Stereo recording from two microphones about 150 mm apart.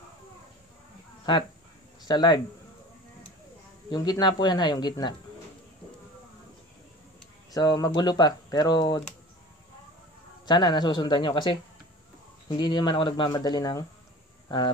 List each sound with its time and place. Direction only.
2.0 s speech: 30° left (ahead or behind)
3.9 s speech: 30° left (ahead or behind)
7.5 s speech: 25° left (ahead or behind)
10.4 s speech: 30° left (ahead or behind)